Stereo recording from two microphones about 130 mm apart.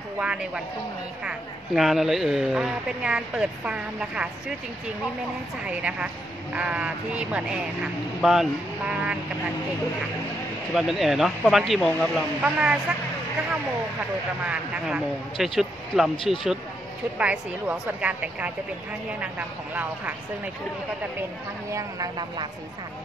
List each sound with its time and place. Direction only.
1.8 s speech: centre (ahead or behind)
5.7 s speech: 10° right (ahead or behind)
10.7 s speech: 5° right (ahead or behind)
12.4 s speech: 10° right (ahead or behind)
14.4 s speech: 10° right (ahead or behind)
21.7 s speech: 30° right (ahead or behind)